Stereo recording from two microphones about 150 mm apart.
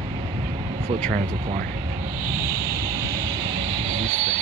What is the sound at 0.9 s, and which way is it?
Speech, 40° right (ahead or behind).